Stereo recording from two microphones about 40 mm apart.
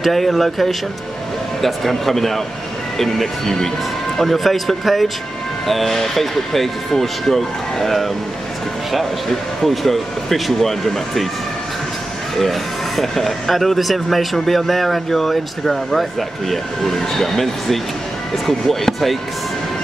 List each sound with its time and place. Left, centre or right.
0.0 s speech: centre
9.6 s speech: centre
12.4 s speech: centre